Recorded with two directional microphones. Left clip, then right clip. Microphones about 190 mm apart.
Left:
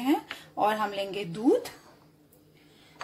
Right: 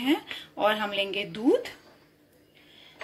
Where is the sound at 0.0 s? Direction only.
25° left (ahead or behind).